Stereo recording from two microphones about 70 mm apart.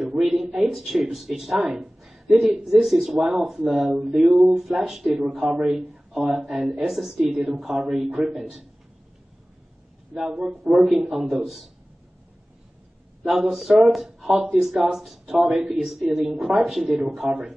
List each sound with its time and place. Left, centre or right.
0.0 s a sound: centre
0.6 s speech: centre
5.3 s a woman's voice: centre
6.4 s speech: centre
7.2 s speech: centre
7.7 s a woman's voice: centre
10.5 s speech: centre
13.2 s speech: centre
15.4 s a woman's voice: centre